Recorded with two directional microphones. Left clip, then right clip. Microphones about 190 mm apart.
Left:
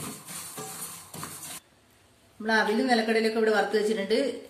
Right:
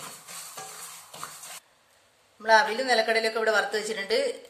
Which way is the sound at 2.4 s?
45° right (ahead or behind).